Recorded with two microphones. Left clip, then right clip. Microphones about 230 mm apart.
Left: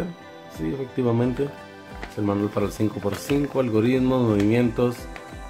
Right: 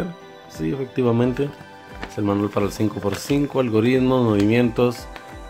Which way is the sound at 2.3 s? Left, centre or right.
Centre.